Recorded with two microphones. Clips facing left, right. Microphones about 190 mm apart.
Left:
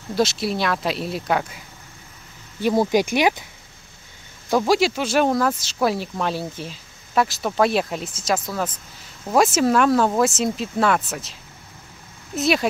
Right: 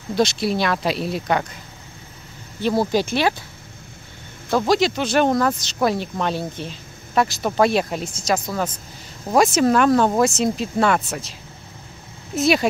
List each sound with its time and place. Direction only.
0.1 s speech: 5° left (ahead or behind)
2.6 s speech: 15° left (ahead or behind)
4.5 s speech: 10° left (ahead or behind)
12.4 s speech: centre (ahead or behind)